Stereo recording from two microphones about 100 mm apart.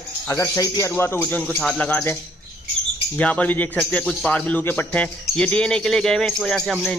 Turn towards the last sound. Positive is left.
turn(degrees=5)  # may be behind; listen again after turning